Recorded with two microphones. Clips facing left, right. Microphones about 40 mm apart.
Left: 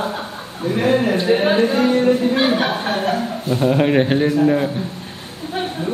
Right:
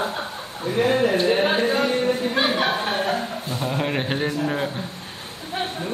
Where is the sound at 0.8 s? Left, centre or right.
Left.